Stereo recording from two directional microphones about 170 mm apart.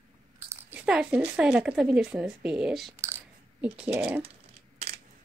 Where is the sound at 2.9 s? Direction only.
15° right (ahead or behind).